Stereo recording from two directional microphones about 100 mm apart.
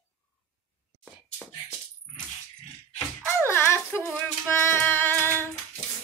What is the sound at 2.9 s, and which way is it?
Speech, 25° left (ahead or behind).